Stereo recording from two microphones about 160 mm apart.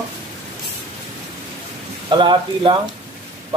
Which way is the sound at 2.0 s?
30° right (ahead or behind).